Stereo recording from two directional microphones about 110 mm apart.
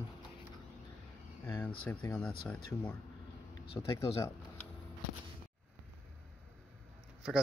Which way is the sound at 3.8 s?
20° left (ahead or behind).